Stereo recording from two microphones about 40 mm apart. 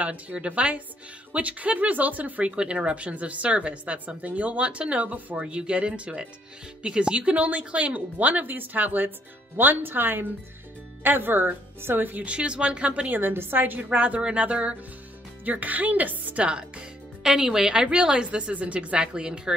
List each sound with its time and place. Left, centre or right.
0.0 s speech: right
2.4 s speech: right
5.5 s a woman's voice: right
12.2 s speech: right
13.1 s a woman's voice: right
13.8 s speech: right
15.4 s speech: right
16.4 s a woman's voice: right
17.2 s a woman's voice: centre
18.5 s a woman's voice: right